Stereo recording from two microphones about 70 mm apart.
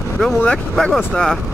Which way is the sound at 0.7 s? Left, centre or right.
Centre.